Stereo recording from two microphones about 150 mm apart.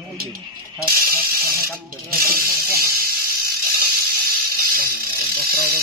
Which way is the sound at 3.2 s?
90° right.